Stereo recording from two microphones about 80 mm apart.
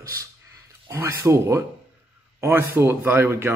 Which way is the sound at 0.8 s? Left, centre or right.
Right.